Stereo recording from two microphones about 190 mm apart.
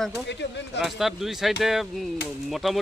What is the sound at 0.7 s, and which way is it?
Speech, centre (ahead or behind).